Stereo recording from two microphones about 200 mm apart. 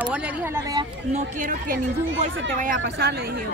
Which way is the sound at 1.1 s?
40° right (ahead or behind).